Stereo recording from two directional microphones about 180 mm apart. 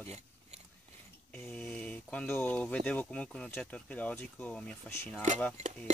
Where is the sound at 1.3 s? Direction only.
10° left (ahead or behind).